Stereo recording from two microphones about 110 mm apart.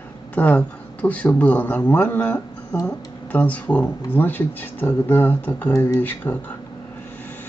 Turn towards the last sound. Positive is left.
turn(degrees=15)  # may be behind; listen again after turning